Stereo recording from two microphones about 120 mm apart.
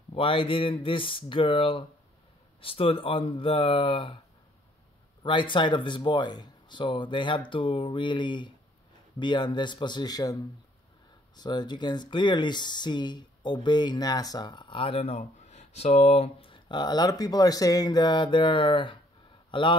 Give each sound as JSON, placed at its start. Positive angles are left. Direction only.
{"t": 0.1, "sound": "speech", "side_deg": 50}
{"t": 5.2, "sound": "a man's voice", "side_deg": 40}